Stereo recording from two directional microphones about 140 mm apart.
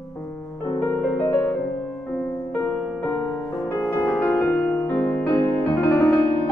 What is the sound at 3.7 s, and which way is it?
Music, 20° left (ahead or behind).